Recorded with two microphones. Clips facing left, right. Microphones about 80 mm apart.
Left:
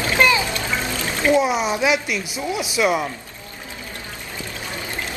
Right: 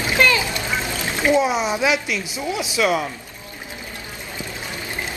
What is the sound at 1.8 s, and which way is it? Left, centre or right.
Speech, left.